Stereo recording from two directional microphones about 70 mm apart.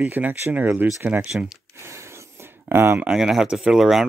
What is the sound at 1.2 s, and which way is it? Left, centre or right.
Speech, centre.